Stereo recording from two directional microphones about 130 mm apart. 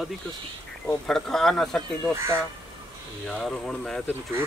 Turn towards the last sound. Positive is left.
turn(degrees=5)  # may be behind; listen again after turning